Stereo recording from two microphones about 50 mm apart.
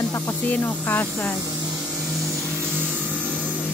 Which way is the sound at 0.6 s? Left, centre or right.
Left.